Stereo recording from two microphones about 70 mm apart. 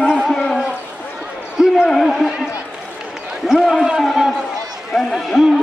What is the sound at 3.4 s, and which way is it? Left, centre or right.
A man's voice, centre.